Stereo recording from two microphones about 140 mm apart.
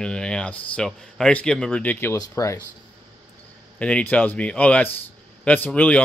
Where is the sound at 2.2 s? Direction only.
25° left (ahead or behind).